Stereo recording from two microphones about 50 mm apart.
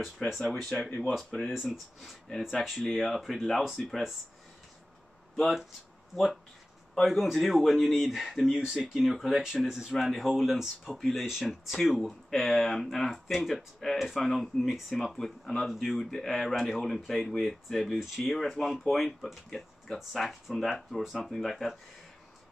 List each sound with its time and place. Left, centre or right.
0.6 s speech: centre
0.8 s speech: left
1.1 s speech: centre
1.5 s speech: centre
5.3 s speech: centre
7.0 s speech: centre
11.0 s speech: centre